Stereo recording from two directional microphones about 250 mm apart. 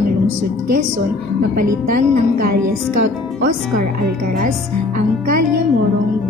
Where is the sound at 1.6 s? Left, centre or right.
Right.